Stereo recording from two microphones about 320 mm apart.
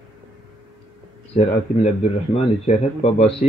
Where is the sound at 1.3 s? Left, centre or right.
Left.